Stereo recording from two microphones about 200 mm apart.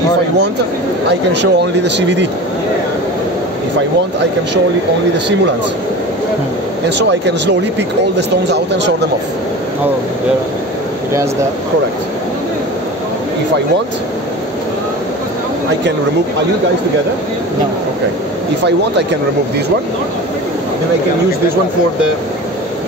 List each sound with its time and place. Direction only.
1.0 s speech: 60° right (ahead or behind)
7.0 s speech: 60° right (ahead or behind)